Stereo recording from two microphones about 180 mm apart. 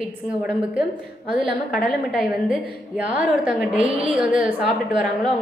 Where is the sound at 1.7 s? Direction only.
5° right (ahead or behind).